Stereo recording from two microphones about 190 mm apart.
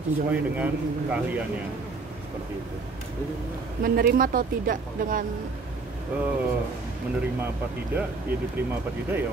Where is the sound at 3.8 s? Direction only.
50° right (ahead or behind).